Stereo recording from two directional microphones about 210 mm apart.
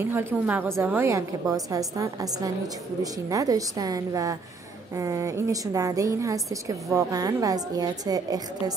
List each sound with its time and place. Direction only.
0.0 s a woman's voice: 10° right (ahead or behind)